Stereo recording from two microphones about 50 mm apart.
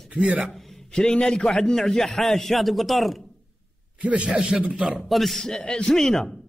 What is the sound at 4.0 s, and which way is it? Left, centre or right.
Speech, right.